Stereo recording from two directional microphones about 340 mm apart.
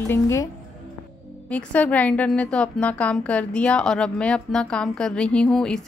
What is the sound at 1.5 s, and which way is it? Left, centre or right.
A woman's voice, centre.